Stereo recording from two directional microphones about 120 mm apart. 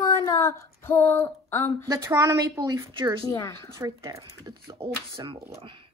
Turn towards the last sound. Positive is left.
turn(degrees=-45)  # may be behind; listen again after turning